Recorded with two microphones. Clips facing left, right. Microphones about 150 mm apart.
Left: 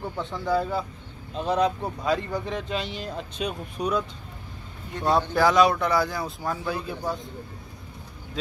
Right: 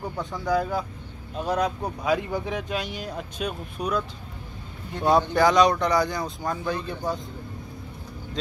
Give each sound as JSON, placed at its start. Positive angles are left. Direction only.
{"t": 0.2, "sound": "speech", "side_deg": -10}
{"t": 5.1, "sound": "speech", "side_deg": 5}